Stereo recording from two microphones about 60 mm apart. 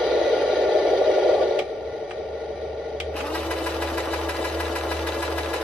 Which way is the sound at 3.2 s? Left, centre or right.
Centre.